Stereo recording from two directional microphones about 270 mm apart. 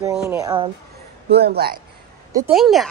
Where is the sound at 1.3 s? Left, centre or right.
Right.